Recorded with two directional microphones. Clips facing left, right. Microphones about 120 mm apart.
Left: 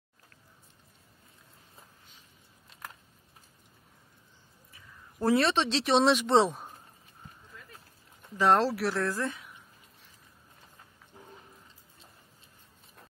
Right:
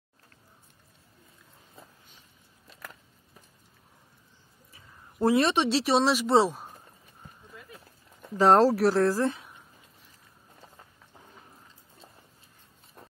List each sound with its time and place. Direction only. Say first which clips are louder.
4.7 s speech: right 6 dB; 20° right (ahead or behind); by 6.7 s centre (ahead or behind)
8.4 s speech: right 5 dB; 40° right (ahead or behind)